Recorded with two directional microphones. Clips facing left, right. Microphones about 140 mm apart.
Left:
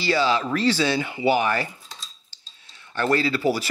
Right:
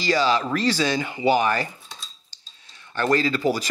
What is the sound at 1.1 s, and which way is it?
Speech, 15° left (ahead or behind).